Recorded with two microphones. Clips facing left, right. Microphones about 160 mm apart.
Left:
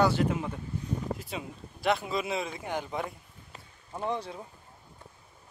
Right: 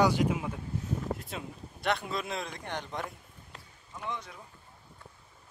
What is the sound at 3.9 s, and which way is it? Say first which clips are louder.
Speech: left 7 dB; 35° left (ahead or behind).